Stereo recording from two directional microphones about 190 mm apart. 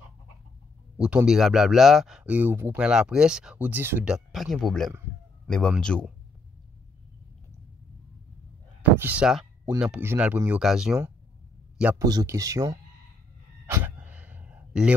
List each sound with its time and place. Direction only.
0.9 s speech: 5° right (ahead or behind)
8.9 s speech: 10° right (ahead or behind)
12.0 s speech: 20° right (ahead or behind)
13.7 s a sound: 10° right (ahead or behind)